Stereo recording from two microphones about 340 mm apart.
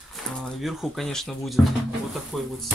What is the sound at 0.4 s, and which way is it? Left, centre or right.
Speech, centre.